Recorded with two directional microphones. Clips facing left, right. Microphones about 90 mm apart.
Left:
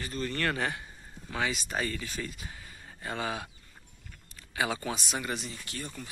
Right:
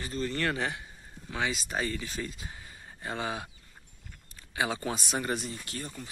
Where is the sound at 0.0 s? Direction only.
25° right (ahead or behind).